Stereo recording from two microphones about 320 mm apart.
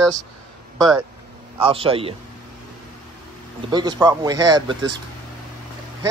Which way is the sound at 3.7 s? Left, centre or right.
Centre.